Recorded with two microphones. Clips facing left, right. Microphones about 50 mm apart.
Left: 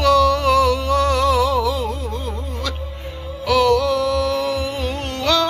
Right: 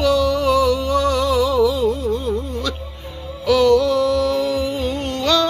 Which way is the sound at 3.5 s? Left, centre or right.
Left.